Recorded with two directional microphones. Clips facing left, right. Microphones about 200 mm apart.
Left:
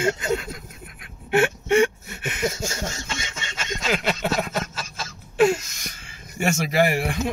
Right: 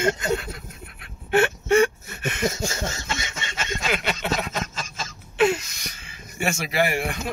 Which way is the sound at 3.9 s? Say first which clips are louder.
Left 3 dB; 40° left (ahead or behind).